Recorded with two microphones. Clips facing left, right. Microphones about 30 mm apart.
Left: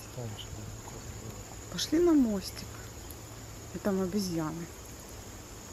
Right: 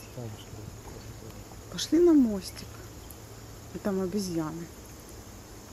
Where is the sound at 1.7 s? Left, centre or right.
Centre.